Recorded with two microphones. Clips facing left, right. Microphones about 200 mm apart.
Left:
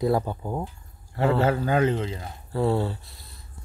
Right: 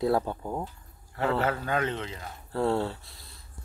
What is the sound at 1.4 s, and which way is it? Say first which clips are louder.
Speech: left 6 dB; 30° left (ahead or behind).